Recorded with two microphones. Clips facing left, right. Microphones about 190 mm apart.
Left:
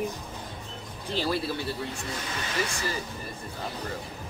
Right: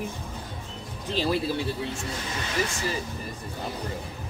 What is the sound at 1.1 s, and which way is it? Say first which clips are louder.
Speech: right 3 dB; 15° right (ahead or behind).